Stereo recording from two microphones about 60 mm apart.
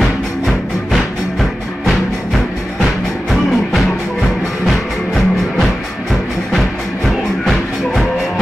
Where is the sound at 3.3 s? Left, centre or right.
Centre.